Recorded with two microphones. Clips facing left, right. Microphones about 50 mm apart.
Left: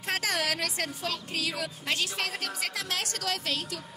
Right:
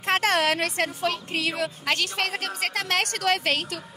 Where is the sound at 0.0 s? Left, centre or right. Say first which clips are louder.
Right 8 dB; right.